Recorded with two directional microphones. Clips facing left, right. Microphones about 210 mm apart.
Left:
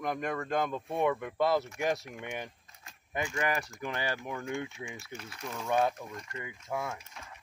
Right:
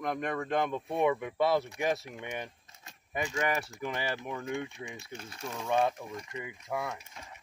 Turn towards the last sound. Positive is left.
turn(degrees=-20)  # may be behind; listen again after turning